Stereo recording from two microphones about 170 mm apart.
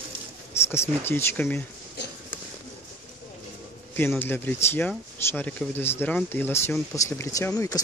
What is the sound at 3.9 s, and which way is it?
Speech, 10° left (ahead or behind).